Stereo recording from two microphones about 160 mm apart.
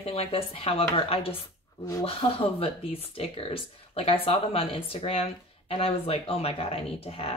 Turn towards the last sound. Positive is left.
turn(degrees=40)  # may be behind; listen again after turning